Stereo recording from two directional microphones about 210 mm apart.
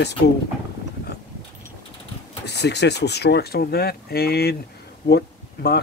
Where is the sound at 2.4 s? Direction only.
55° left (ahead or behind).